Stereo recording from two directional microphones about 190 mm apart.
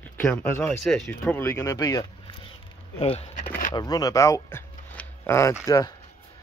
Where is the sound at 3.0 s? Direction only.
30° left (ahead or behind).